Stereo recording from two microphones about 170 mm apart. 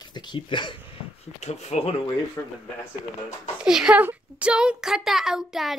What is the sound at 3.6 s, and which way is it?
A child's voice, 5° right (ahead or behind).